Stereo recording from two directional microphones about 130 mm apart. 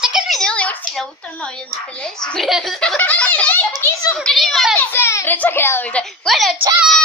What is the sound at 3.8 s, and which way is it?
Speech, 25° left (ahead or behind).